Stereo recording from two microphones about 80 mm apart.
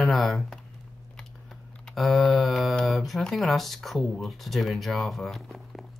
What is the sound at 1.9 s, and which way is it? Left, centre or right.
Speech, centre.